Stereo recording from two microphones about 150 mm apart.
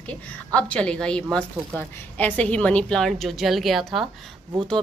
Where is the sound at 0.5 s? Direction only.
10° left (ahead or behind).